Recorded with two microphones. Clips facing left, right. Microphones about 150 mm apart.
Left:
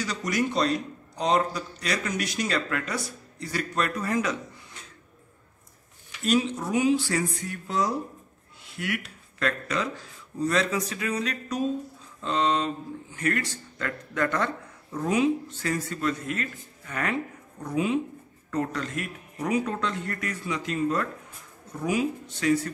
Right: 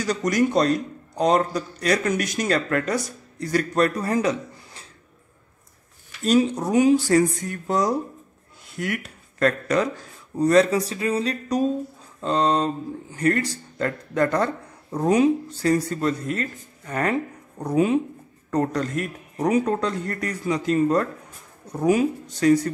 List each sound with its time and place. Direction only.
0.0 s a man's voice: 45° right (ahead or behind)
6.2 s a man's voice: 40° right (ahead or behind)